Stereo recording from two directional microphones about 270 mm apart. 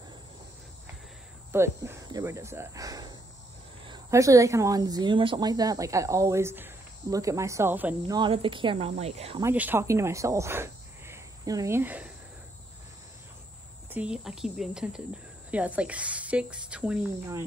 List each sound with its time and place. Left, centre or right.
1.5 s speech: centre
8.2 s speech: centre
9.4 s speech: centre
13.8 s a woman's voice: centre